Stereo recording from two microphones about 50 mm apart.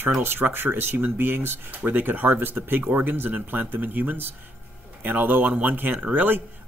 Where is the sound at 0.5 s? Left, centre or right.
Right.